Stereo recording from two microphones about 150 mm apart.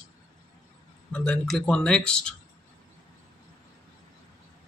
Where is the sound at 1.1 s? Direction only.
5° left (ahead or behind).